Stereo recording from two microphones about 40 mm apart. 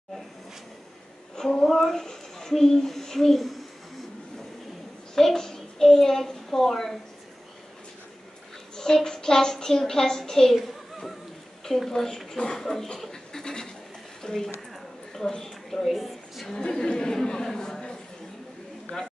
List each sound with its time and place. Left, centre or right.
1.3 s a child's voice: centre
5.1 s a child's voice: centre
8.7 s a woman's voice: centre
10.5 s a sound: centre
11.6 s a woman's voice: centre
14.7 s a sound: centre
16.7 s speech: centre